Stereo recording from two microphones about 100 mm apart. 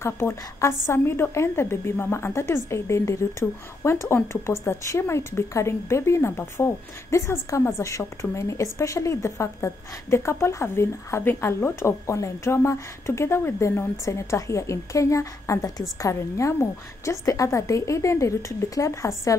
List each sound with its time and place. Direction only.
0.0 s a woman's voice: 25° left (ahead or behind)